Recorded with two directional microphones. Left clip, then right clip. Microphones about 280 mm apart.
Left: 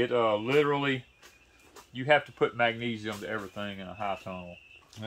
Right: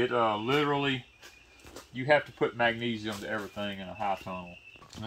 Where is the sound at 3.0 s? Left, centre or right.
Left.